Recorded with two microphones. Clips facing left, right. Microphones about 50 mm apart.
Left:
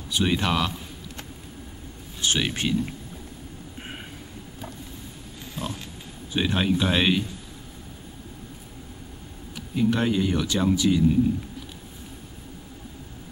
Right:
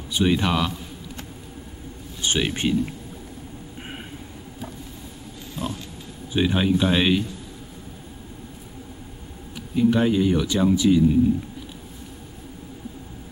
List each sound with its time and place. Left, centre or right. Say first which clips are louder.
0.2 s speech: right 3 dB; centre
2.2 s speech: right 2 dB; centre
5.6 s pig: right 3 dB; centre
6.3 s speech: right 3 dB; centre
9.8 s speech: right 4 dB; centre